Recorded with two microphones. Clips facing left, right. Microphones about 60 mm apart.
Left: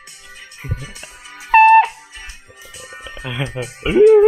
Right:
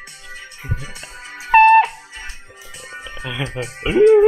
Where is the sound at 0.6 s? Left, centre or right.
Centre.